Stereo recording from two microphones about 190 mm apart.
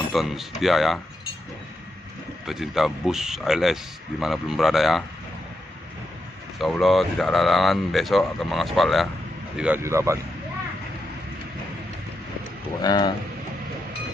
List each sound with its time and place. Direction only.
0.1 s speech: centre (ahead or behind)
2.4 s speech: centre (ahead or behind)
6.6 s speech: centre (ahead or behind)
9.6 s speech: 10° right (ahead or behind)
12.8 s speech: 20° left (ahead or behind)